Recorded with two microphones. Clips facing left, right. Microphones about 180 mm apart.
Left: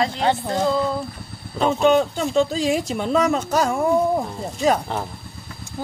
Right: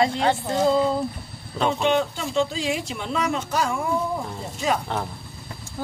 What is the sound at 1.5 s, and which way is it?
Speech, 5° left (ahead or behind).